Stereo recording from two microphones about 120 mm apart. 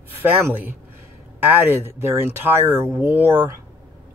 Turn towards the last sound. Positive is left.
turn(degrees=-15)  # may be behind; listen again after turning